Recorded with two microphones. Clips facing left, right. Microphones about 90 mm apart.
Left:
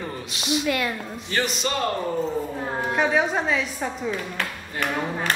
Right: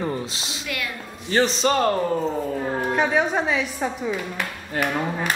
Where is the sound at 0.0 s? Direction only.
30° right (ahead or behind).